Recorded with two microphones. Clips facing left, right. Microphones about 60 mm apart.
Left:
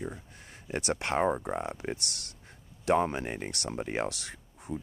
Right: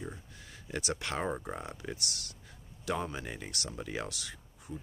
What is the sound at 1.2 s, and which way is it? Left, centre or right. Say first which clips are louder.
Speech: left 7 dB; centre.